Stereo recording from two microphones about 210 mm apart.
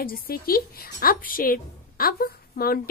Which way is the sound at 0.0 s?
45° left (ahead or behind).